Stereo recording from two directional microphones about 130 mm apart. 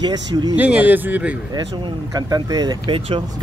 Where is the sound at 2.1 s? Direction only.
30° right (ahead or behind).